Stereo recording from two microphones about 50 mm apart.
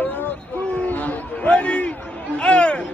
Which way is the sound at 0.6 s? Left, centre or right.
Left.